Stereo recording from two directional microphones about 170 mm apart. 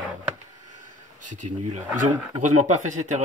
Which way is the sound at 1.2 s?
50° right (ahead or behind).